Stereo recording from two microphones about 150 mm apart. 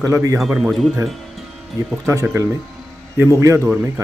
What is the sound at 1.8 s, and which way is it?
A man's voice, 20° right (ahead or behind).